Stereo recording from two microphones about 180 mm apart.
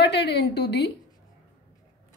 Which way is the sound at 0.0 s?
70° left (ahead or behind).